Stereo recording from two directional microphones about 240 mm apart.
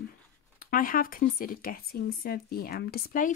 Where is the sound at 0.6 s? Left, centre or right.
Left.